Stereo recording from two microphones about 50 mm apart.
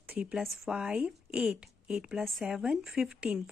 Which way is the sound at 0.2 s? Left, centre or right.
Right.